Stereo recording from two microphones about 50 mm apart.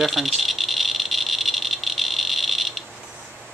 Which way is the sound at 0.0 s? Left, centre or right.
Centre.